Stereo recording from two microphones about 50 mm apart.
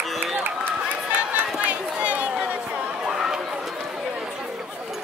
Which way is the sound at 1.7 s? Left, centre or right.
Right.